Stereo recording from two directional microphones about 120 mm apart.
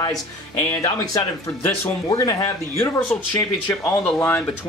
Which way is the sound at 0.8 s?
30° left (ahead or behind).